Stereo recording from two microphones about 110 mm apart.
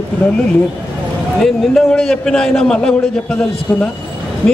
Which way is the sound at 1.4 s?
5° left (ahead or behind).